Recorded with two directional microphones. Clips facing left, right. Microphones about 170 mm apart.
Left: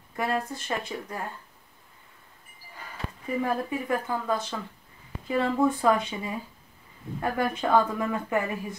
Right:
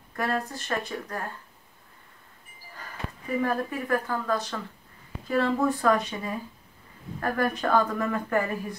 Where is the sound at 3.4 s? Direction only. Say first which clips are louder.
Even; 15° left (ahead or behind).